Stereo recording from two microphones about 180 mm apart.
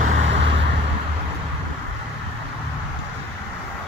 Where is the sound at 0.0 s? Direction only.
40° right (ahead or behind).